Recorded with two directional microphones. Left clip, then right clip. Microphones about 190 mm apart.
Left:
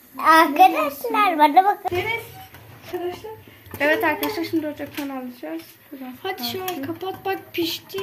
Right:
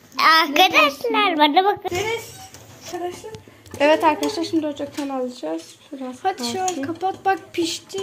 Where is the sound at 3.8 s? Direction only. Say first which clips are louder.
Right 4 dB; 35° right (ahead or behind).